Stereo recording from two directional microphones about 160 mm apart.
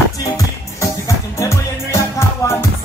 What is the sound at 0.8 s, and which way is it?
Music, 20° left (ahead or behind).